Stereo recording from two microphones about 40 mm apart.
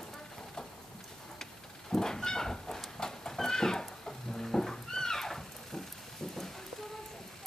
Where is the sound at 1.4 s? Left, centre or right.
Centre.